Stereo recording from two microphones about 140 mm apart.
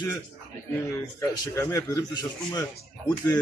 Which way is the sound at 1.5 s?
20° left (ahead or behind).